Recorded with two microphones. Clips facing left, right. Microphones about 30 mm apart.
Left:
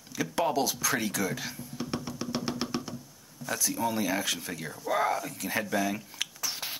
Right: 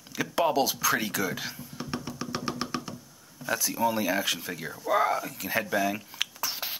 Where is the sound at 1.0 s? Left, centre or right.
Centre.